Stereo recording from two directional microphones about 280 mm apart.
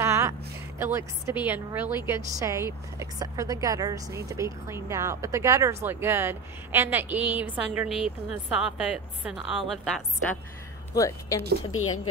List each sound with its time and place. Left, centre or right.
0.0 s a sound: centre
2.0 s a woman's voice: centre
11.0 s speech: centre
11.7 s speech: left